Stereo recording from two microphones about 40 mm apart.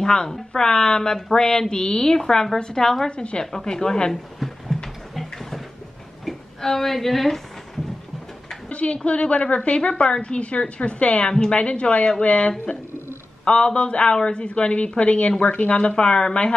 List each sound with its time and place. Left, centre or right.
0.0 s a woman's voice: centre
3.1 s a woman's voice: left
4.1 s a sound: centre
8.6 s a woman's voice: left